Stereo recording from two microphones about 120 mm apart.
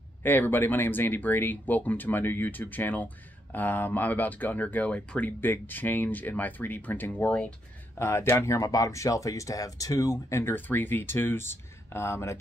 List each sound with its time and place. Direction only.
0.2 s speech: 15° left (ahead or behind)